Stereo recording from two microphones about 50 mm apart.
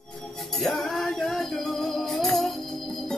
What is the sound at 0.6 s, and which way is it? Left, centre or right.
Music, centre.